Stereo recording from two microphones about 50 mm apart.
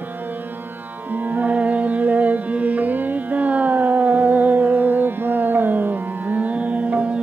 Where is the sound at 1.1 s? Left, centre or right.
Right.